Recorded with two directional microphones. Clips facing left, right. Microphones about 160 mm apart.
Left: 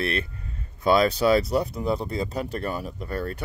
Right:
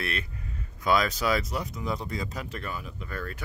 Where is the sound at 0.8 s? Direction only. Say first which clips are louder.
Left 6 dB; 30° left (ahead or behind).